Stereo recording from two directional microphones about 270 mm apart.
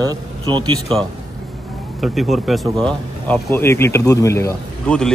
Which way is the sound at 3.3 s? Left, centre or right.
Centre.